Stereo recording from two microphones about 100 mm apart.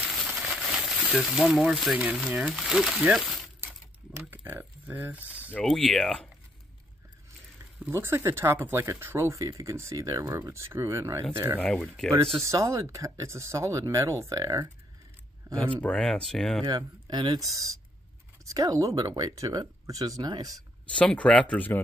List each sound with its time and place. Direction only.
0.3 s a sound: 5° right (ahead or behind)
1.2 s speech: centre (ahead or behind)
4.2 s speech: 15° right (ahead or behind)
5.6 s speech: 5° left (ahead or behind)
7.9 s speech: 25° right (ahead or behind)
11.6 s speech: 5° left (ahead or behind)
12.4 s speech: 30° right (ahead or behind)
15.8 s speech: 5° left (ahead or behind)
16.6 s speech: 45° right (ahead or behind)
17.4 s speech: 35° right (ahead or behind)
20.5 s speech: 10° left (ahead or behind)